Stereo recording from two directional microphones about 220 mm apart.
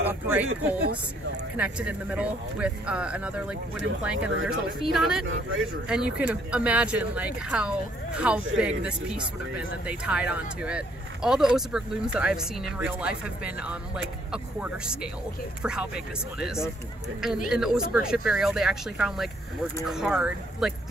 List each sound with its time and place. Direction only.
0.0 s speech: 5° right (ahead or behind)
1.6 s speech: 5° right (ahead or behind)
5.2 s speech: 65° right (ahead or behind)
5.9 s speech: 5° right (ahead or behind)